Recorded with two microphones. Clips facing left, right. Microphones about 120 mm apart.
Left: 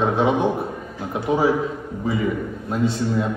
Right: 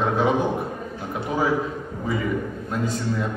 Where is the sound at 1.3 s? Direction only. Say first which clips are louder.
Left 4 dB; 20° left (ahead or behind).